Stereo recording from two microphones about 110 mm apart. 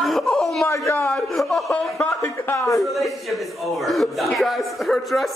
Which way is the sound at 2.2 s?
20° left (ahead or behind).